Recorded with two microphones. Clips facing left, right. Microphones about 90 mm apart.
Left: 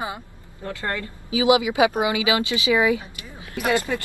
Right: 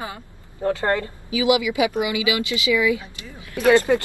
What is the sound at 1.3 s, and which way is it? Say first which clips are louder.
A woman's voice: left 1 dB; 25° left (ahead or behind).